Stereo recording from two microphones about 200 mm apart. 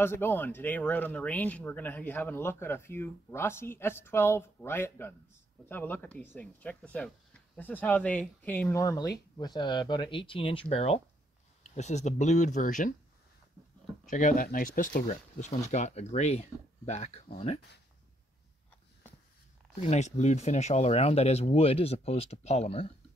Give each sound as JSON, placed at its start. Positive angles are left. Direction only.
{"t": 0.0, "sound": "speech", "side_deg": 10}
{"t": 14.1, "sound": "speech", "side_deg": 45}
{"t": 19.8, "sound": "speech", "side_deg": 35}